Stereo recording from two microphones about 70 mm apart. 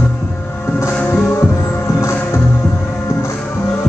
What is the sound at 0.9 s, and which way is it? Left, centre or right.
Music, left.